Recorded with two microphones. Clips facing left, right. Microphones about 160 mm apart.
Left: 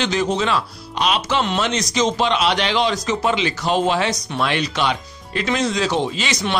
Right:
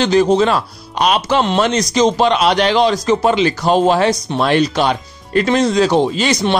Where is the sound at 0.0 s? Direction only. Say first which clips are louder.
Right 8 dB; 40° right (ahead or behind).